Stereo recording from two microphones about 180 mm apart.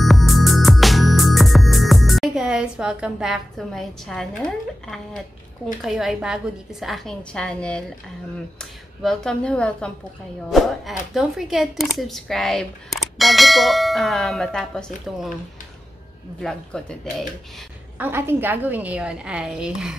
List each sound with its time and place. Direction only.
0.0 s music: centre (ahead or behind)
5.8 s speech: centre (ahead or behind)
16.3 s speech: 5° left (ahead or behind)
17.9 s a woman's voice: 10° right (ahead or behind)